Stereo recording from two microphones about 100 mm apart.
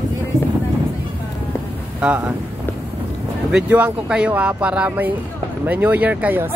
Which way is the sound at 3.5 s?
10° right (ahead or behind).